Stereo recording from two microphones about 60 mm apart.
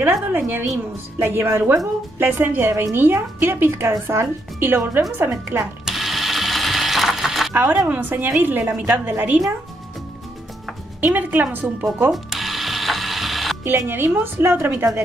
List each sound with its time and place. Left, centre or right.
0.0 s a woman's voice: right
1.2 s a woman's voice: right
2.7 s speech: right
3.0 s a woman's voice: right
5.6 s ratchet: centre
7.5 s a woman's voice: right
11.1 s a woman's voice: right
12.1 s ratchet: centre
13.7 s a woman's voice: right